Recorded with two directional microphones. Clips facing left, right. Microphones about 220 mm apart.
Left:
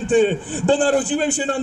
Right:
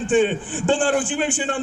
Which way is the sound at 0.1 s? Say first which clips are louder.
Left 3 dB; 40° left (ahead or behind).